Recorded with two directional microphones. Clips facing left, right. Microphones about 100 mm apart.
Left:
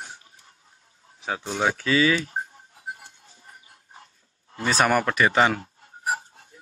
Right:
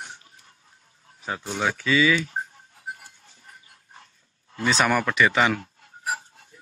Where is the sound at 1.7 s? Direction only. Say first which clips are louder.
Right 2 dB; 35° left (ahead or behind).